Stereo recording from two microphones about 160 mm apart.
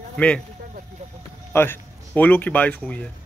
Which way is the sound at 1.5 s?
15° left (ahead or behind).